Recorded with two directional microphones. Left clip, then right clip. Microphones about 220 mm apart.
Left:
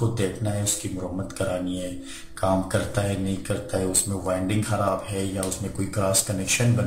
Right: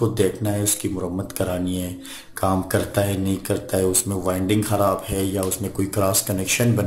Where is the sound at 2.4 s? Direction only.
45° right (ahead or behind).